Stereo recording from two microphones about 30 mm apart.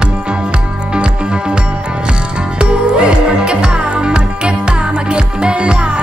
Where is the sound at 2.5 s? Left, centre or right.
Right.